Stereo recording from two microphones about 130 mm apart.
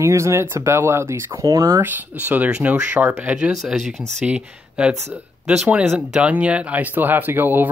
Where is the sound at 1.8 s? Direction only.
15° right (ahead or behind).